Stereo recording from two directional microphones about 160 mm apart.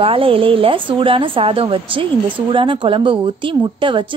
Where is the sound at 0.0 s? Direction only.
35° right (ahead or behind).